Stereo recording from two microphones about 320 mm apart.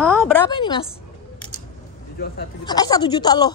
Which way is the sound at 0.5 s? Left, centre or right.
Centre.